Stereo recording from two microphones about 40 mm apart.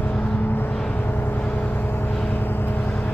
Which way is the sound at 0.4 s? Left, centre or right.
Left.